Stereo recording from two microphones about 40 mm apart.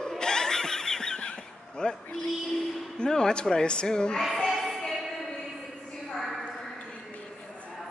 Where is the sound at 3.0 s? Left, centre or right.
Centre.